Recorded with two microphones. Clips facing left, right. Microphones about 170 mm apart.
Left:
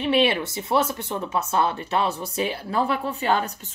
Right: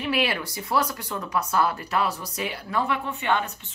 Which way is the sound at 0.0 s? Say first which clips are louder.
Left 5 dB; 25° left (ahead or behind).